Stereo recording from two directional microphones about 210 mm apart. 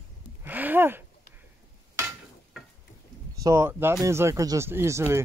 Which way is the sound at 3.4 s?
15° right (ahead or behind).